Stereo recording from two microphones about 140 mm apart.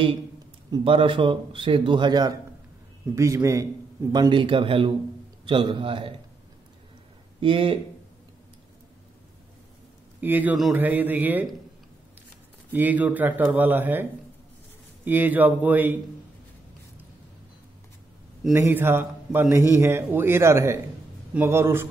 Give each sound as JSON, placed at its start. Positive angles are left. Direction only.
{"t": 0.8, "sound": "speech", "side_deg": -40}
{"t": 7.3, "sound": "speech", "side_deg": -40}
{"t": 10.2, "sound": "speech", "side_deg": -15}
{"t": 12.7, "sound": "speech", "side_deg": -10}
{"t": 15.0, "sound": "speech", "side_deg": -15}
{"t": 18.5, "sound": "speech", "side_deg": -15}